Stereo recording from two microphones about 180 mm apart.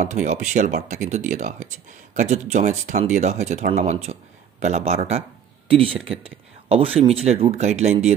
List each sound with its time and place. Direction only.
0.0 s speech: 40° right (ahead or behind)